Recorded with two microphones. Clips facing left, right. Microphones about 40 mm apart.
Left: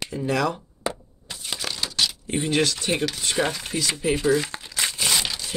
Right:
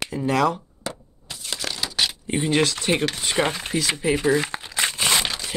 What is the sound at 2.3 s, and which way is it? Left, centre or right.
Speech, right.